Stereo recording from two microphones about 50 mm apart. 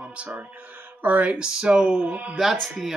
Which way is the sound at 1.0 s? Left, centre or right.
Right.